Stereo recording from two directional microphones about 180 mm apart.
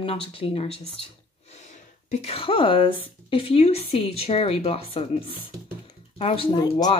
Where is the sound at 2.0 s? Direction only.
35° left (ahead or behind).